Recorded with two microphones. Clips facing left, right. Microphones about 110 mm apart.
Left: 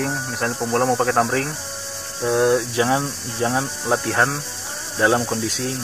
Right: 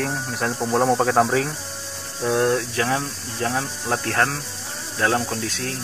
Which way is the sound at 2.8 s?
15° left (ahead or behind).